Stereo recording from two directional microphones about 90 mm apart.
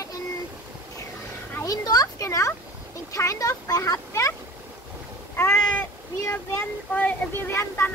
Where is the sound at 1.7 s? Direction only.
45° left (ahead or behind).